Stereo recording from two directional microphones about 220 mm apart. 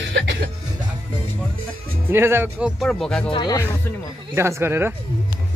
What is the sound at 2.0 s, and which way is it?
Speech, 10° right (ahead or behind).